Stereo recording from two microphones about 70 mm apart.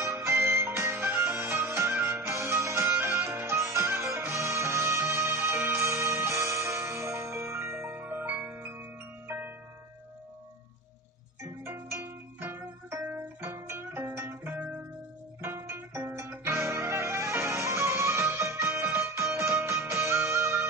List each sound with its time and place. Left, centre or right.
0.0 s music: right
11.6 s music: right